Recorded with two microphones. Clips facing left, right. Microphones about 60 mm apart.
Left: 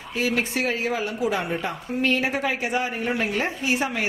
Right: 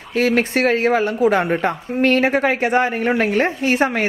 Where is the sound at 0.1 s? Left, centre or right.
Right.